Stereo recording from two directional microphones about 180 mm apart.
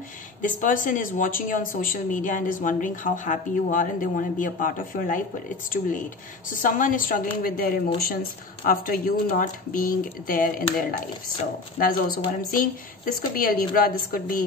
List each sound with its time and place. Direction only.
0.4 s speech: 45° left (ahead or behind)
12.5 s speech: 50° left (ahead or behind)